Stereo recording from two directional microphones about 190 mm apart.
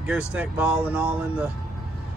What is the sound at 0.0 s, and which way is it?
Speech, 5° right (ahead or behind).